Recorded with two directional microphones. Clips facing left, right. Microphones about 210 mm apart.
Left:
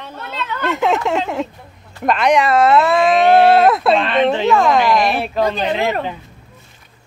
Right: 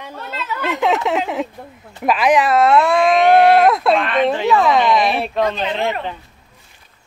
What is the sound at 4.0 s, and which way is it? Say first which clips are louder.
Speech: left 1 dB; 30° left (ahead or behind).